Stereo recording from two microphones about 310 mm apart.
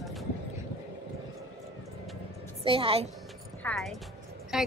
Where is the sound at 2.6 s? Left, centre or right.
Centre.